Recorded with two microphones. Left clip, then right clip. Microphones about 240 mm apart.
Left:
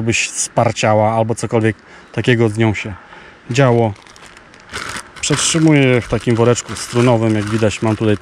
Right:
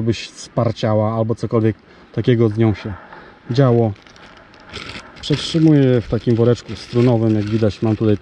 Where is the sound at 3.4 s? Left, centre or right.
Centre.